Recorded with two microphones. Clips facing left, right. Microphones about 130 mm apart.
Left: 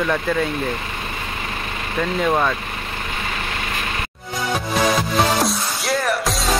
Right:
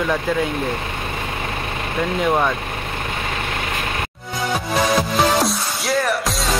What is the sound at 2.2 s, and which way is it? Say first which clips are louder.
Speech: right 1 dB; 15° right (ahead or behind).